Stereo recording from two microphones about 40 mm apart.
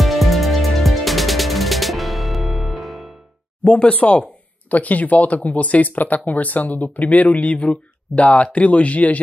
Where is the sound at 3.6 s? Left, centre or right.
Left.